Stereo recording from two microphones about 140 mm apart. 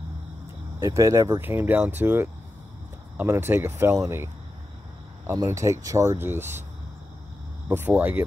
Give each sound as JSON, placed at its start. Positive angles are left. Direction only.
{"t": 0.7, "sound": "speech", "side_deg": -20}
{"t": 7.6, "sound": "speech", "side_deg": -15}